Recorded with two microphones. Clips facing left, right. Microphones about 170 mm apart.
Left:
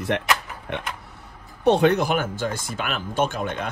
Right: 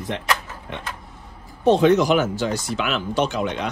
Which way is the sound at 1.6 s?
65° left (ahead or behind).